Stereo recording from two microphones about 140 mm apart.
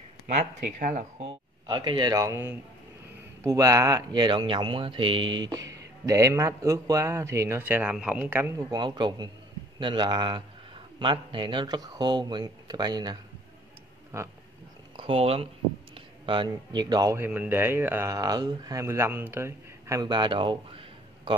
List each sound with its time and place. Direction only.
0.3 s speech: 65° right (ahead or behind)
1.3 s speech: 35° right (ahead or behind); by 8.6 s 15° right (ahead or behind)
8.6 s speech: 30° right (ahead or behind)
14.1 s speech: 20° right (ahead or behind)
15.0 s speech: 40° right (ahead or behind)
16.3 s speech: 35° right (ahead or behind)